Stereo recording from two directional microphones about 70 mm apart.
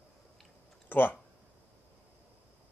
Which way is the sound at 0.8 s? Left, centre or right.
Left.